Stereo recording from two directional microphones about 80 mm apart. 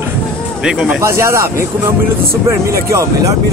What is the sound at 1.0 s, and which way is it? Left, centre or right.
Speech, right.